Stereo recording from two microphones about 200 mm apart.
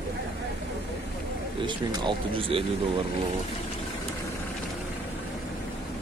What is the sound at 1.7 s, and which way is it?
Speech, 25° right (ahead or behind).